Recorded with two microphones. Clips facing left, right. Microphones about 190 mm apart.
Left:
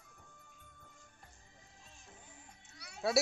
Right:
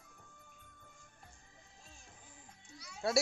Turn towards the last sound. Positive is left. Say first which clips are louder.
# right 1 dB
turn(degrees=65)  # may be behind; listen again after turning